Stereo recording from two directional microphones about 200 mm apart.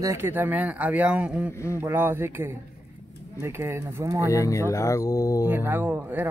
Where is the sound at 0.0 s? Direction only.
15° right (ahead or behind).